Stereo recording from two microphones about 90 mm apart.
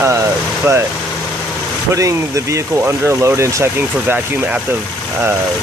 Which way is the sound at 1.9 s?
35° right (ahead or behind).